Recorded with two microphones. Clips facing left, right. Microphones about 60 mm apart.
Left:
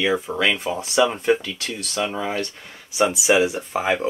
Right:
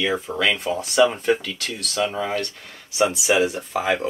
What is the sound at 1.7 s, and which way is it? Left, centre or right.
Speech, left.